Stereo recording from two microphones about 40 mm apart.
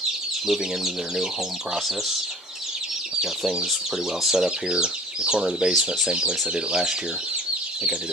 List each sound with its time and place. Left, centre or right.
0.5 s speech: centre
4.2 s speech: centre
6.0 s speech: right